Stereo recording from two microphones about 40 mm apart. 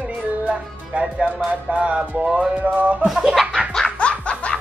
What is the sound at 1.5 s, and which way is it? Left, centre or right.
Music, right.